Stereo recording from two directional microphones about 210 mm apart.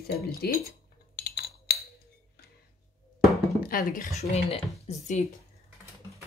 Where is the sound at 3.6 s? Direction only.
45° left (ahead or behind).